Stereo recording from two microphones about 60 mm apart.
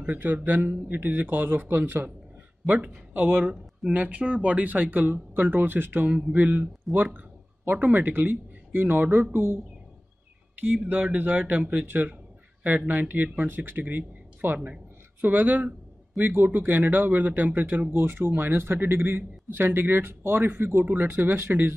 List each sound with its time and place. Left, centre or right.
0.0 s speech: right
10.6 s speech: right